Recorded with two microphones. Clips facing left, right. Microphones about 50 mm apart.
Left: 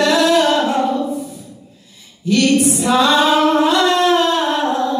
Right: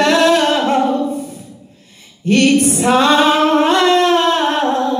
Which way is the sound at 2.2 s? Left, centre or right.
Right.